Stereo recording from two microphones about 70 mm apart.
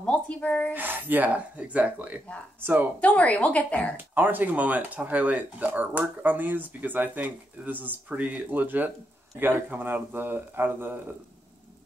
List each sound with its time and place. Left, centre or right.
0.0 s speech: centre
0.7 s speech: right
3.0 s speech: centre
3.9 s speech: right